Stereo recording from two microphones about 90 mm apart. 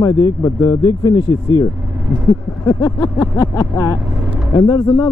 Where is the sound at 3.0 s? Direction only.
50° left (ahead or behind).